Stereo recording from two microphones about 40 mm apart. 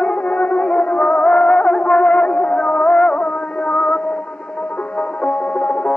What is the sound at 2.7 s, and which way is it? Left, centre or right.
Music, centre.